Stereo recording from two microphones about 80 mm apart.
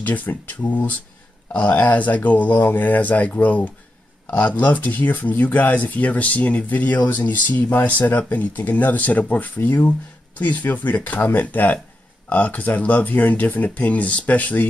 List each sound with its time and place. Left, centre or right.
0.0 s speech: left